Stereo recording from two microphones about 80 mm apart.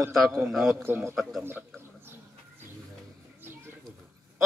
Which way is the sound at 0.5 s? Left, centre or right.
Centre.